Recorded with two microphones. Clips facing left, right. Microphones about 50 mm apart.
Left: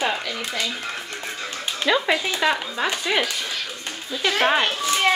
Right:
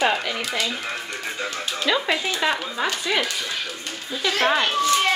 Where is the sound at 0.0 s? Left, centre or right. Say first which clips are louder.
Right 3 dB; right.